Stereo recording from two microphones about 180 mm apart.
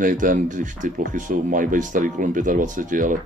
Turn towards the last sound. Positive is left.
turn(degrees=-45)  # may be behind; listen again after turning